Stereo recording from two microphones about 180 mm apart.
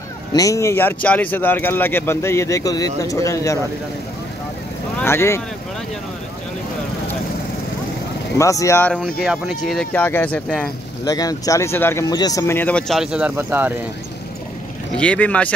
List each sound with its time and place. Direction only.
0.3 s a man's voice: 20° left (ahead or behind)
5.0 s a man's voice: 15° left (ahead or behind)
8.4 s a man's voice: 15° left (ahead or behind); by 9.8 s centre (ahead or behind)
9.9 s a man's voice: 10° left (ahead or behind)
11.1 s a man's voice: 20° left (ahead or behind); by 13.7 s 10° right (ahead or behind)
15.0 s a man's voice: 5° left (ahead or behind)